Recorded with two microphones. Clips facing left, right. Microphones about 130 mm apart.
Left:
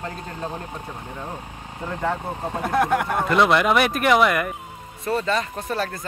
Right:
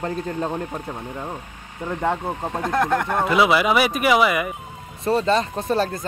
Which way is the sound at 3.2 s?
5° right (ahead or behind).